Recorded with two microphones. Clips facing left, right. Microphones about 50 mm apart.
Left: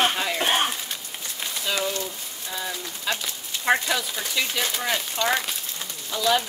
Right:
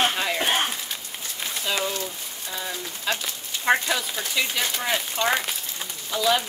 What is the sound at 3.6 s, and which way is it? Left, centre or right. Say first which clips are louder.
Speech: even; centre.